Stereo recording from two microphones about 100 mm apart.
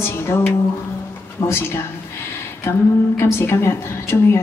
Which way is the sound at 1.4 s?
60° left (ahead or behind).